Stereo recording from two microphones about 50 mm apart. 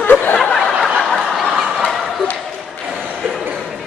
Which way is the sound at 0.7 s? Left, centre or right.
Centre.